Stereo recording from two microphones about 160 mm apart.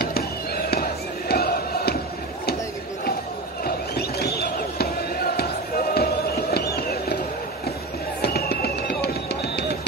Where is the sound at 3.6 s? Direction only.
80° left.